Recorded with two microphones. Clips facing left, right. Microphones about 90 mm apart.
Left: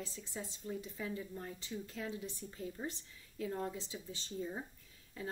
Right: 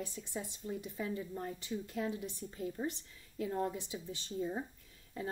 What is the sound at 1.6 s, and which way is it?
A woman's voice, 15° right (ahead or behind).